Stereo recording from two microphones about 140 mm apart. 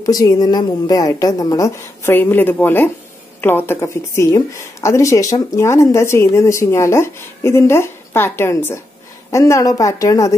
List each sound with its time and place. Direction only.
0.0 s speech: 25° left (ahead or behind)